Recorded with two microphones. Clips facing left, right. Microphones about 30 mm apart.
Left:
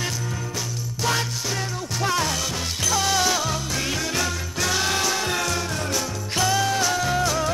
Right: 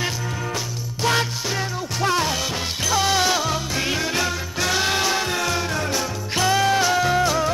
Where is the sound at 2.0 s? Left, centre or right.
Centre.